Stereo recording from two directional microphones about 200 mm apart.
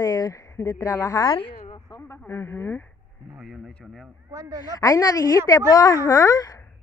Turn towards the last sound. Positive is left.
turn(degrees=20)  # may be behind; listen again after turning